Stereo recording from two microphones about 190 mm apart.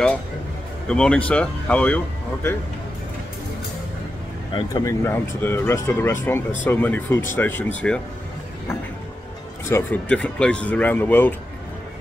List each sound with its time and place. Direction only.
0.8 s speech: 5° left (ahead or behind)
4.6 s speech: 20° left (ahead or behind)
9.7 s speech: 10° left (ahead or behind)